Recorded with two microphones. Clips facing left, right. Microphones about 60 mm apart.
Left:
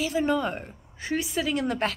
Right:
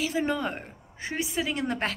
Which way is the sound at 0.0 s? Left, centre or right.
Right.